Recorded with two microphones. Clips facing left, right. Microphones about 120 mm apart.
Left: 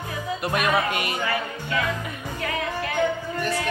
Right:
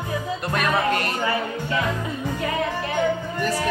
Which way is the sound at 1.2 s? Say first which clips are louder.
Right 3 dB; 25° right (ahead or behind).